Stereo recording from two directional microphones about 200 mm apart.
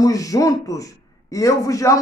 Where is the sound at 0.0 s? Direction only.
15° left (ahead or behind).